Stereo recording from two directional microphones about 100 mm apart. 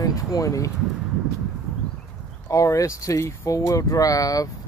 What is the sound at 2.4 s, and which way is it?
Speech, 35° left (ahead or behind).